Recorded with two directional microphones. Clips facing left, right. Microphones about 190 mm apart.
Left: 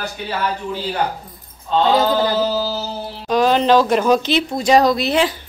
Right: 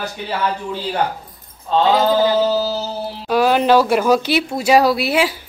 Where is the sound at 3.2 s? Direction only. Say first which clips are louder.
Even; 10° right (ahead or behind).